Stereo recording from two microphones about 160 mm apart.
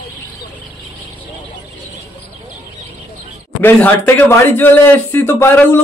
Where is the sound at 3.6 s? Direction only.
10° left (ahead or behind).